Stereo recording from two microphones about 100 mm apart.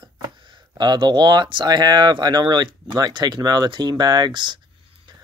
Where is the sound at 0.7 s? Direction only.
45° right (ahead or behind).